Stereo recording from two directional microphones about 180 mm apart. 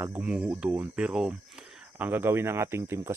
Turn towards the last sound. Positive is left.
turn(degrees=-15)  # may be behind; listen again after turning